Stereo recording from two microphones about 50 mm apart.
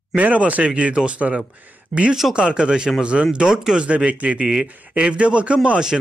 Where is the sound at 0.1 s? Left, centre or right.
Right.